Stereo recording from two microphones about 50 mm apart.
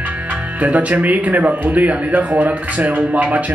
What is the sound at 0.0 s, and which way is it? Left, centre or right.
Speech, right.